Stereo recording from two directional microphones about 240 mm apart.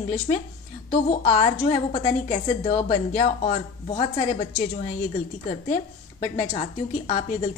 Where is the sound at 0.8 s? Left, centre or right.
Left.